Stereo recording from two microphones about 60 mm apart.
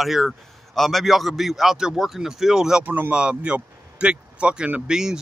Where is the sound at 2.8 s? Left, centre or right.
Right.